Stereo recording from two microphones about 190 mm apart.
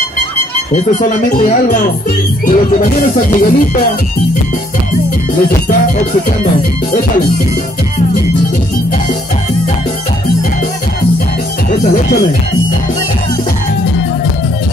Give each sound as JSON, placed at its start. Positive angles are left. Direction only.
{"t": 1.0, "sound": "speech", "side_deg": 40}
{"t": 2.4, "sound": "music", "side_deg": 45}
{"t": 11.8, "sound": "music", "side_deg": 50}